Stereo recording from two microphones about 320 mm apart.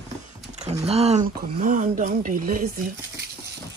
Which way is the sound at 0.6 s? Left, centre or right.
Centre.